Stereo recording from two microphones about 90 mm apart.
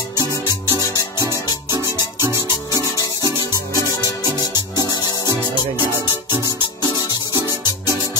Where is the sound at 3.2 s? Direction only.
50° right (ahead or behind).